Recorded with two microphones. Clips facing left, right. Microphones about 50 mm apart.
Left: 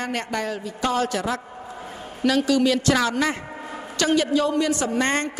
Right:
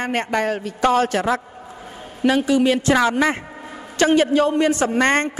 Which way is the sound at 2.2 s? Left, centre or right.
Right.